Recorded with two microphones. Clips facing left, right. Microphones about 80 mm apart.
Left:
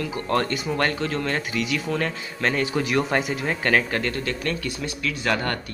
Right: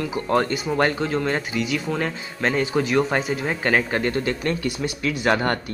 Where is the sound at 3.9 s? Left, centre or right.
Right.